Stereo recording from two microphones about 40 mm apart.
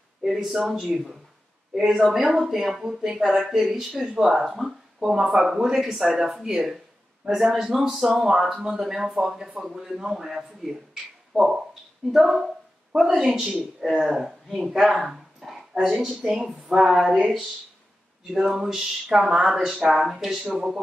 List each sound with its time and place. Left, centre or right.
0.2 s speech: centre
0.8 s speech: centre
1.8 s speech: centre
2.8 s speech: centre
3.3 s speech: centre
13.4 s speech: centre
13.7 s speech: centre
14.8 s dog: centre
15.8 s speech: centre